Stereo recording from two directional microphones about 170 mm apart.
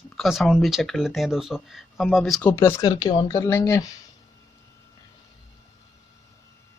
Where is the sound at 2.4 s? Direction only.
15° left (ahead or behind).